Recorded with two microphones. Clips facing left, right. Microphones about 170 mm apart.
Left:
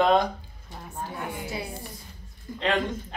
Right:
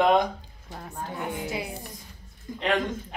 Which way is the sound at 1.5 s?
20° right (ahead or behind).